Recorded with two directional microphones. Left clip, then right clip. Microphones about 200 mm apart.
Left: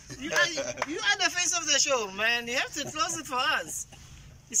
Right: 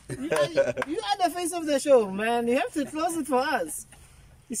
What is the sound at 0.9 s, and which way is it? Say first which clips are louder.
Speech: right 1 dB; 25° right (ahead or behind).